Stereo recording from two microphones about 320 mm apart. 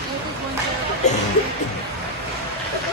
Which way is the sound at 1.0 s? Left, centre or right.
Left.